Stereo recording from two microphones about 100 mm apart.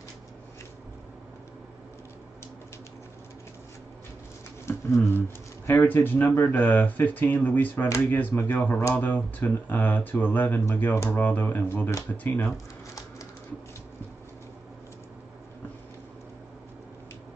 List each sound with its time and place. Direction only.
4.6 s speech: 25° left (ahead or behind)